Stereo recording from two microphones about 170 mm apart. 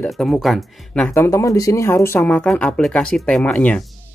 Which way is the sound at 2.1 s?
5° left (ahead or behind).